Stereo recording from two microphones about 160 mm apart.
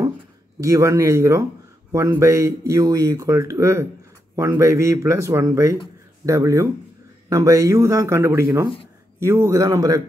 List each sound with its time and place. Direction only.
0.6 s speech: 20° right (ahead or behind)